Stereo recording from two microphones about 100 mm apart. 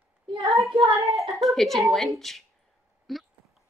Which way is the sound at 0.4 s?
30° right (ahead or behind).